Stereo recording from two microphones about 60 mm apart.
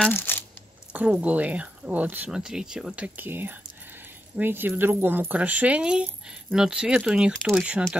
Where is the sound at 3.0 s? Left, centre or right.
Right.